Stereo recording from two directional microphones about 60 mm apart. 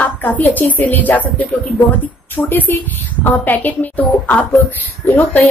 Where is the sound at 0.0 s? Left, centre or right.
Left.